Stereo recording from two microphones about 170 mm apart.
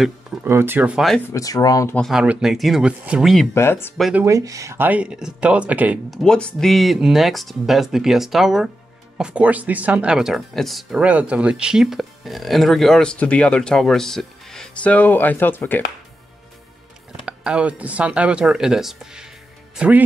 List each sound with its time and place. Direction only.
0.0 s speech: 10° right (ahead or behind)
1.2 s speech: 20° left (ahead or behind)
2.0 s speech: centre (ahead or behind)
3.5 s speech: 15° left (ahead or behind)
4.0 s speech: 10° right (ahead or behind); by 15.8 s 10° left (ahead or behind)
17.2 s speech: 5° right (ahead or behind)